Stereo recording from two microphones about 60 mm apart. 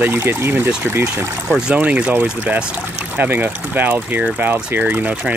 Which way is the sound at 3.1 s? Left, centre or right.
Right.